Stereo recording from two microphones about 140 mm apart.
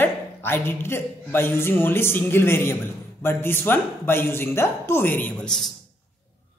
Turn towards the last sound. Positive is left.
turn(degrees=10)  # may be behind; listen again after turning